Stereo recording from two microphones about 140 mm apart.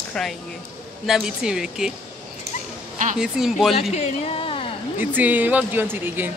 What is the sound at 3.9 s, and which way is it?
Speech, 50° left (ahead or behind).